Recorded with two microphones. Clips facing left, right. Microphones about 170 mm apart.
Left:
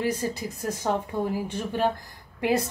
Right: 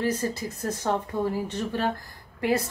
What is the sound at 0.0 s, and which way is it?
A woman's voice, 15° left (ahead or behind).